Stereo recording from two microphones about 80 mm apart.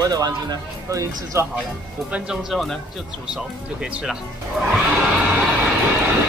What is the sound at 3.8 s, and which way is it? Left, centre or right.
Speech, centre.